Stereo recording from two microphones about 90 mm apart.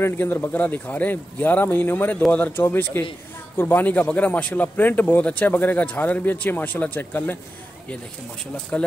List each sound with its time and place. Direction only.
0.0 s a man's voice: 25° left (ahead or behind)
8.7 s speech: 15° left (ahead or behind)